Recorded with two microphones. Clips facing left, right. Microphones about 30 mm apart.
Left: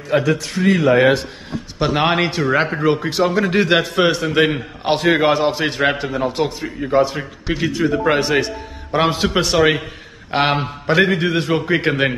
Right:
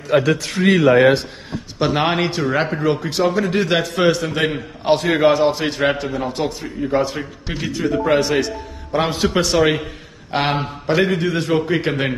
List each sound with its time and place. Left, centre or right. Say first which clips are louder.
0.1 s a man's voice: right 1 dB; right
1.8 s a man's voice: left 1 dB; centre
11.1 s a man's voice: even; left